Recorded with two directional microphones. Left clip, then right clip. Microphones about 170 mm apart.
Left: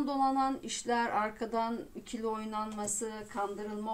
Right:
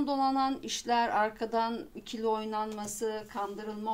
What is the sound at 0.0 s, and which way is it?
A woman's voice, 30° right (ahead or behind).